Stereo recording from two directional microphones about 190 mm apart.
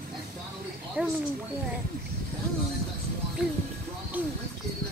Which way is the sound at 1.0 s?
10° right (ahead or behind).